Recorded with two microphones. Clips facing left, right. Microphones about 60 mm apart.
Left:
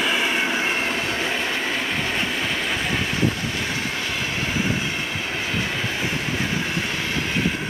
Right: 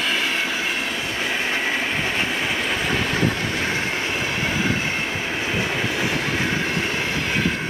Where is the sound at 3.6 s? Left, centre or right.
Right.